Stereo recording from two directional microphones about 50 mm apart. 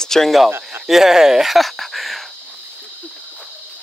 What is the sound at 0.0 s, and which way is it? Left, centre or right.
Speech, centre.